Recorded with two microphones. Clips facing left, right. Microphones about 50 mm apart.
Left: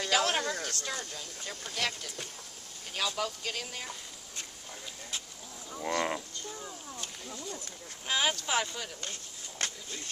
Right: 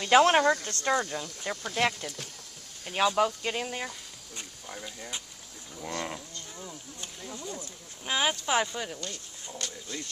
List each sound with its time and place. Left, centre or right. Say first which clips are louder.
0.0 s speech: right 9 dB; right
5.8 s livestock: left 4 dB; left
7.3 s speech: right 3 dB; right
8.1 s speech: right 3 dB; centre
9.0 s speech: right 2 dB; left